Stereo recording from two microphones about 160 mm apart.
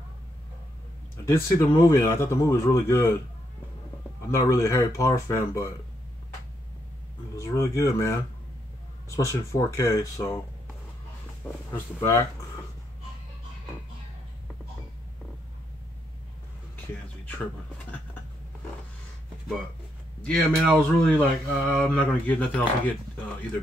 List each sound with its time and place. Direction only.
1.7 s speech: 20° left (ahead or behind)
4.2 s speech: 20° left (ahead or behind)
7.3 s speech: 20° left (ahead or behind)
11.7 s speech: 15° left (ahead or behind)
20.2 s speech: 5° left (ahead or behind)